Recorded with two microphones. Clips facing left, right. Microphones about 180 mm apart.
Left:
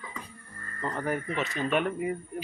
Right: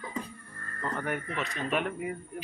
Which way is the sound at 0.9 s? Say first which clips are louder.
Left 3 dB; 30° left (ahead or behind).